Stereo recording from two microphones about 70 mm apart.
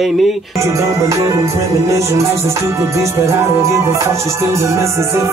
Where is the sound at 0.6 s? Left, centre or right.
Right.